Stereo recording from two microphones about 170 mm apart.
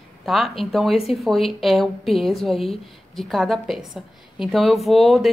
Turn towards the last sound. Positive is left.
turn(degrees=0)  # may be behind; listen again after turning